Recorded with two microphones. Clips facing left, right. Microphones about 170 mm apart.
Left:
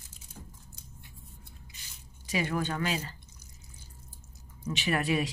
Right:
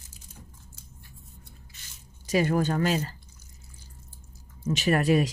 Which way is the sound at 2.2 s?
45° right (ahead or behind).